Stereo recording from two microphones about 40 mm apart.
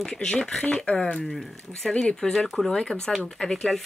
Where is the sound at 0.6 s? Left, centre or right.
Left.